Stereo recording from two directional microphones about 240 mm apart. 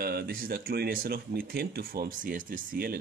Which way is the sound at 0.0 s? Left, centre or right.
Right.